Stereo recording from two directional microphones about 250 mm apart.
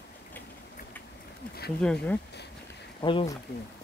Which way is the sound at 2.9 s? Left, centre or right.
Centre.